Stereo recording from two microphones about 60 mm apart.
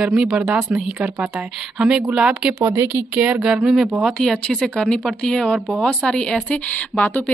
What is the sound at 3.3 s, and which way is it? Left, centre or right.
Speech, centre.